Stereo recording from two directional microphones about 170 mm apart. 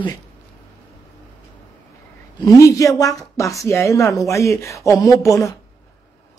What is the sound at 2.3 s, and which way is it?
Speech, 20° left (ahead or behind).